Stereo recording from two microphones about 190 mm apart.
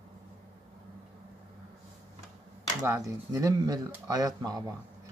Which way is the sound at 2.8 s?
15° right (ahead or behind).